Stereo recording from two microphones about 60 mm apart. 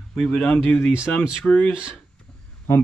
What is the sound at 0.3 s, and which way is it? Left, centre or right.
Speech, centre.